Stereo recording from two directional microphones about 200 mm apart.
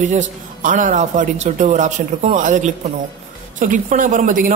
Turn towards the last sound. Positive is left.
turn(degrees=-40)  # may be behind; listen again after turning